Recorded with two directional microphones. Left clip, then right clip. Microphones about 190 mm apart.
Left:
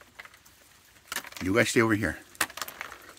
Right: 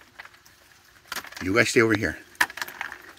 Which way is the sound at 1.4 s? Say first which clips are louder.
Right 4 dB; 15° left (ahead or behind).